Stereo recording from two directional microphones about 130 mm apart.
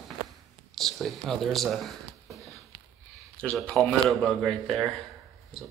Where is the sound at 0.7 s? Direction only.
Centre (ahead or behind).